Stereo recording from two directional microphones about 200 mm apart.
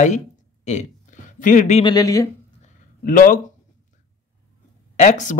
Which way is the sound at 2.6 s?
40° left (ahead or behind).